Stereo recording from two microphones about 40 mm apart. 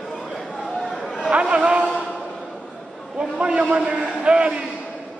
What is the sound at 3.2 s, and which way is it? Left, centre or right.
A man's voice, right.